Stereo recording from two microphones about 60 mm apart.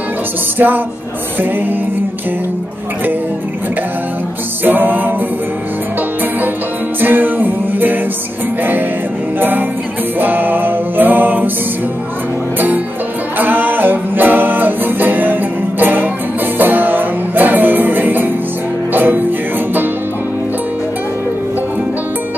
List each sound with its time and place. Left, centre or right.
0.6 s music: right
4.6 s music: right
7.0 s music: right
9.4 s music: right
12.5 s music: right